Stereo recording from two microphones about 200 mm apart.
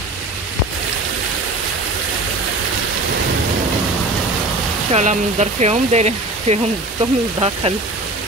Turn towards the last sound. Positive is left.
turn(degrees=-30)  # may be behind; listen again after turning